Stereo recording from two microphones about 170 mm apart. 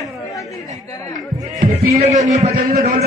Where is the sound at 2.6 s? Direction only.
55° right (ahead or behind).